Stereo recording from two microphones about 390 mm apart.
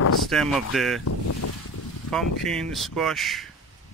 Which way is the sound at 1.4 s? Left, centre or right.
Left.